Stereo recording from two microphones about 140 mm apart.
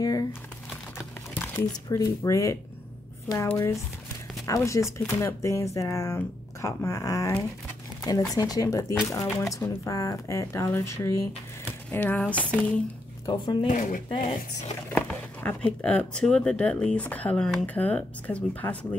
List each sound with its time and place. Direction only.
0.0 s crumpling: 25° left (ahead or behind)
0.9 s crumpling: 15° left (ahead or behind)
1.9 s speech: 20° left (ahead or behind)
13.2 s speech: 35° left (ahead or behind)
13.7 s speech: 70° left (ahead or behind)
14.9 s speech: 10° left (ahead or behind)